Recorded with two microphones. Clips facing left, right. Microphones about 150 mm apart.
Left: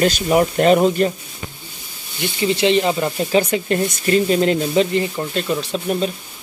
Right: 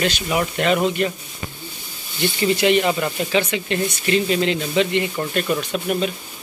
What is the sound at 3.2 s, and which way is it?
Speech, 40° left (ahead or behind).